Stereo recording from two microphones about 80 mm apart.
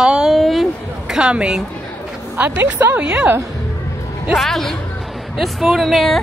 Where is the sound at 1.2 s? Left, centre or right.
Centre.